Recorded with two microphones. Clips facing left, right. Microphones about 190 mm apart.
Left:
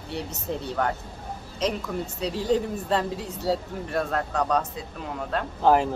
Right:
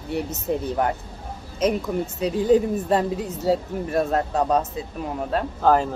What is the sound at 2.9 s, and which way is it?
Speech, 20° right (ahead or behind).